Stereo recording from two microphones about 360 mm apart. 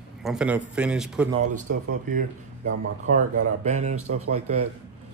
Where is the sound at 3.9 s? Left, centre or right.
Right.